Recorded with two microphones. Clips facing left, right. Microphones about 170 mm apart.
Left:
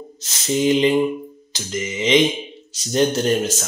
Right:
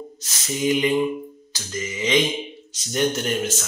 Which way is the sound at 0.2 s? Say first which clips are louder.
Left 6 dB; 30° left (ahead or behind).